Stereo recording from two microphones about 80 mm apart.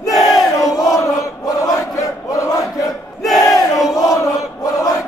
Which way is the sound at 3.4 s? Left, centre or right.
Left.